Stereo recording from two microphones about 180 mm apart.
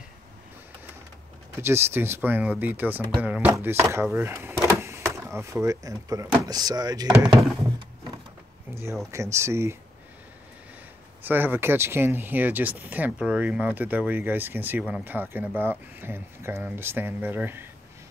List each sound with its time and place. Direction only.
1.6 s speech: 15° right (ahead or behind)
9.1 s speech: 15° right (ahead or behind)
11.2 s speech: 10° right (ahead or behind)